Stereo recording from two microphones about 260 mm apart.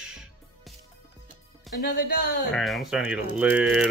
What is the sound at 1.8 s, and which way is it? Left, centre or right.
Speech, left.